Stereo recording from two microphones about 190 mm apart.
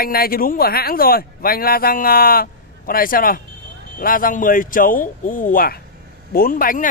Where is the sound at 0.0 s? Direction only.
50° left (ahead or behind).